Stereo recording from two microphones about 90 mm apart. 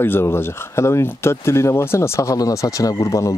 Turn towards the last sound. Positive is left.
turn(degrees=40)  # may be behind; listen again after turning